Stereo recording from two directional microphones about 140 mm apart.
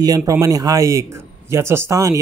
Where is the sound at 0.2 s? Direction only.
20° right (ahead or behind).